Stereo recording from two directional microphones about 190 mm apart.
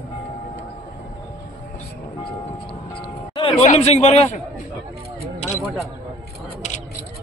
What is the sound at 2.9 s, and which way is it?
Music, 25° left (ahead or behind).